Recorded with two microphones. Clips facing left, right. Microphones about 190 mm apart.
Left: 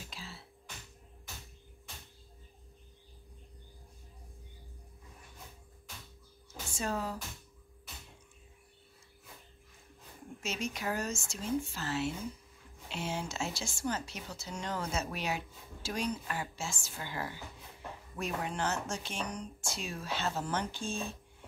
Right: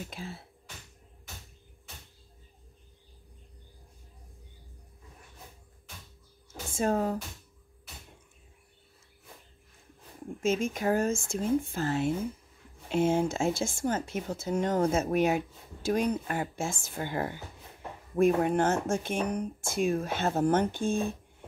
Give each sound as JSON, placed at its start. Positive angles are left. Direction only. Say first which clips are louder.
{"t": 0.1, "sound": "speech", "louder": "right 7 dB", "side_deg": -50}
{"t": 6.7, "sound": "speech", "louder": "right 8 dB", "side_deg": -50}
{"t": 10.4, "sound": "speech", "louder": "right 9 dB", "side_deg": -50}